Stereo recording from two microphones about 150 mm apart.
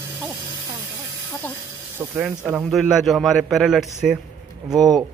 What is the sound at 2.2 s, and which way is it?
Speech, 10° right (ahead or behind).